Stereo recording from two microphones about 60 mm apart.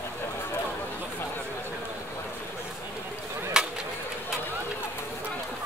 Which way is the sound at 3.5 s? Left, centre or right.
Centre.